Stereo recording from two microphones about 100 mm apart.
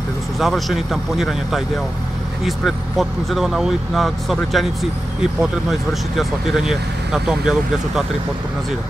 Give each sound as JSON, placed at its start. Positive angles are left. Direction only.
{"t": 0.4, "sound": "speech", "side_deg": 0}